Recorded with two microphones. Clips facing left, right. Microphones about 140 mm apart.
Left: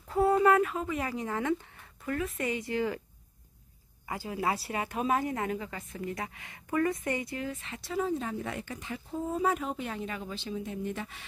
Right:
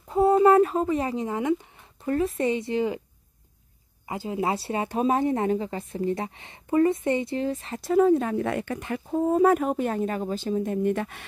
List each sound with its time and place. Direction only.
0.1 s a sound: 25° right (ahead or behind)
2.0 s speech: 30° right (ahead or behind)
4.0 s speech: 25° right (ahead or behind); by 11.2 s 60° right (ahead or behind)